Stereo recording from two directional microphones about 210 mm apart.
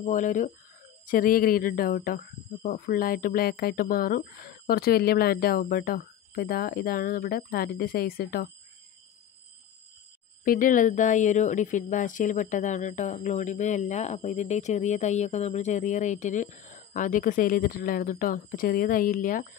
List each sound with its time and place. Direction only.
0.0 s a woman's voice: 35° left (ahead or behind)
10.4 s a woman's voice: 40° left (ahead or behind)